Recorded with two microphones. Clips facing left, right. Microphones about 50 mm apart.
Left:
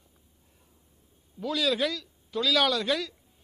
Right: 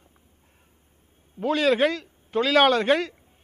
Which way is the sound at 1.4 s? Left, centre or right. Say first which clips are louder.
Right 7 dB; right.